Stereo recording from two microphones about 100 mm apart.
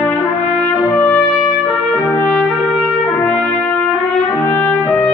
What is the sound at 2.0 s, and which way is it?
Trumpet, 15° left (ahead or behind).